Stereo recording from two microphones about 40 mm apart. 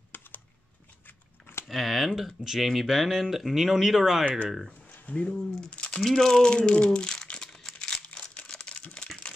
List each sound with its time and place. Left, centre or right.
0.1 s computer keyboard: left
1.7 s speech: centre
5.2 s speech: left
6.0 s speech: centre
7.5 s crumpling: centre
8.0 s crumpling: left
8.6 s typing: left